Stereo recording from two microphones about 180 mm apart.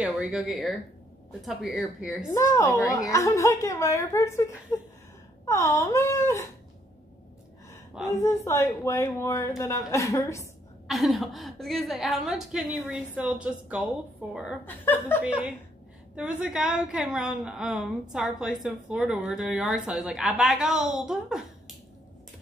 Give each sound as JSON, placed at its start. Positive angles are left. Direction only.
{"t": 0.0, "sound": "a woman's voice", "side_deg": -5}
{"t": 2.2, "sound": "a woman's voice", "side_deg": 15}
{"t": 8.2, "sound": "a woman's voice", "side_deg": 15}
{"t": 10.9, "sound": "a woman's voice", "side_deg": 0}
{"t": 14.6, "sound": "a woman's voice", "side_deg": 10}
{"t": 15.2, "sound": "a woman's voice", "side_deg": -5}